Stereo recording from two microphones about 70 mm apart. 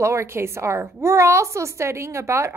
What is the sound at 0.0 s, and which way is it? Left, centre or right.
A woman's voice, right.